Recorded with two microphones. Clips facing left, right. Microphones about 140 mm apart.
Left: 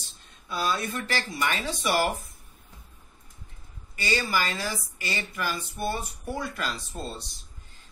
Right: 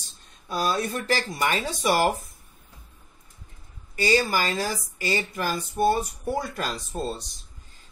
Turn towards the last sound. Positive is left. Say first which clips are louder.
# right 6 dB
turn(degrees=-45)  # may be behind; listen again after turning